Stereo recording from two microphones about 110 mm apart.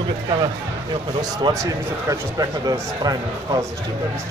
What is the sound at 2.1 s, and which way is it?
A man's voice, 35° right (ahead or behind).